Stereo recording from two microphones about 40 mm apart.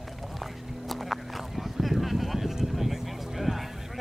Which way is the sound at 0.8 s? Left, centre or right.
Centre.